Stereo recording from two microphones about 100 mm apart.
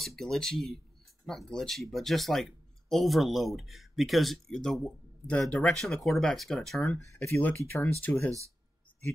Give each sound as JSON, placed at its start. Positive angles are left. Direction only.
{"t": 0.0, "sound": "speech", "side_deg": 5}
{"t": 7.0, "sound": "speech", "side_deg": 25}
{"t": 8.1, "sound": "speech", "side_deg": 5}